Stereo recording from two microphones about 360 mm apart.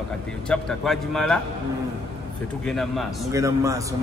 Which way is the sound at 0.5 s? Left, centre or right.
Centre.